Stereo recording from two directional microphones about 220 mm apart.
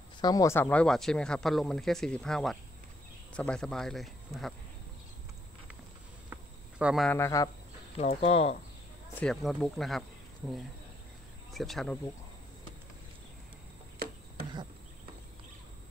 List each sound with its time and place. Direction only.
0.2 s speech: 15° left (ahead or behind); by 4.6 s centre (ahead or behind)
6.3 s cricket: 5° right (ahead or behind)
7.1 s speech: 10° left (ahead or behind)
8.0 s speech: 30° left (ahead or behind)
9.2 s speech: centre (ahead or behind)
11.5 s speech: centre (ahead or behind)